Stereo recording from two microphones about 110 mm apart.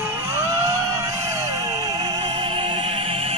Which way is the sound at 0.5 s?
25° right (ahead or behind).